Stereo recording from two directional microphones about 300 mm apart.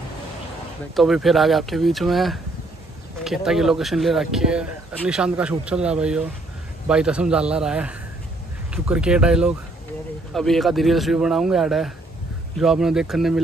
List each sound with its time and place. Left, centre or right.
0.9 s speech: centre